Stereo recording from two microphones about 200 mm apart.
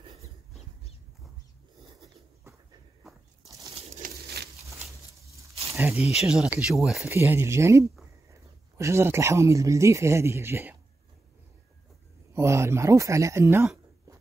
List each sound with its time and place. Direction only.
0.0 s dog: 20° right (ahead or behind)
3.4 s bird: 15° right (ahead or behind)
3.7 s pigeon: 40° right (ahead or behind)
5.5 s snake: 30° right (ahead or behind)
5.8 s speech: 10° right (ahead or behind)
12.4 s speech: 15° right (ahead or behind)